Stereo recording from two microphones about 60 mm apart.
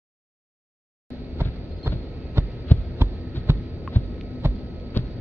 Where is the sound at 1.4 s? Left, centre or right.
Right.